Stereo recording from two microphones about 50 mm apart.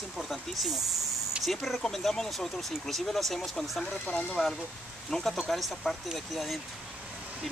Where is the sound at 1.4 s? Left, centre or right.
Centre.